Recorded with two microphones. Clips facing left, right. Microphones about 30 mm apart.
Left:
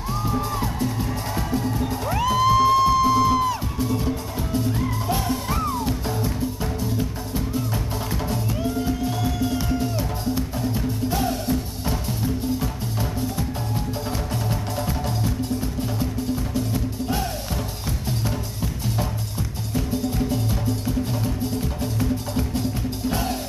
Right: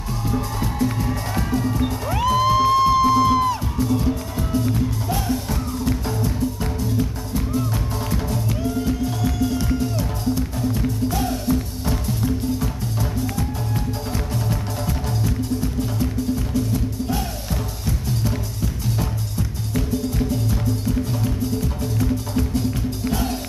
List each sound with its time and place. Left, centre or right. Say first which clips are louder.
0.2 s music: right 1 dB; centre
14.3 s music: right 1 dB; centre
23.0 s music: right 1 dB; centre